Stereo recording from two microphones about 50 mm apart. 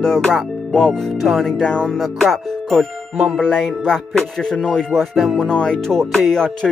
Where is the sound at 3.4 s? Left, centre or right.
Centre.